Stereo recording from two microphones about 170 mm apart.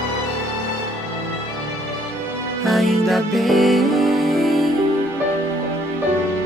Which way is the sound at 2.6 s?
Centre (ahead or behind).